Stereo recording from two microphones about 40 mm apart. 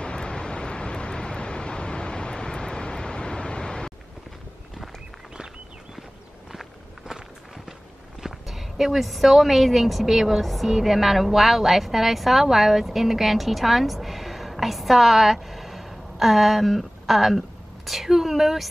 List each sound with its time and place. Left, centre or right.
0.0 s vehicle: left
6.5 s walk: centre
8.2 s speech: centre